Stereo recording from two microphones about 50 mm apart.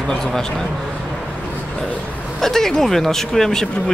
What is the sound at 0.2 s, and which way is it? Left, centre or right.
Speech, centre.